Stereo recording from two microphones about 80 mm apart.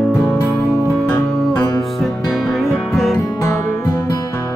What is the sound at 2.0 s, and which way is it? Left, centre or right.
Music, centre.